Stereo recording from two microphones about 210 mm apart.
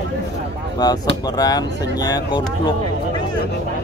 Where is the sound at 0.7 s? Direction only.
20° left (ahead or behind).